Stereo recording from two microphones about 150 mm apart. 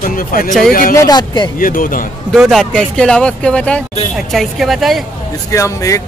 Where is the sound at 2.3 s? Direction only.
Centre (ahead or behind).